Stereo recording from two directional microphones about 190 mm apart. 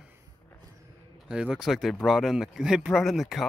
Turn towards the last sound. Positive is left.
turn(degrees=0)  # may be behind; listen again after turning